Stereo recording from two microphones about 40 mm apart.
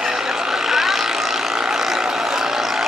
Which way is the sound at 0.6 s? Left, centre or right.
Centre.